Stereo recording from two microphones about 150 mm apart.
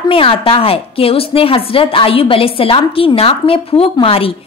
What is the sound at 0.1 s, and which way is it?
A woman's voice, 35° left (ahead or behind).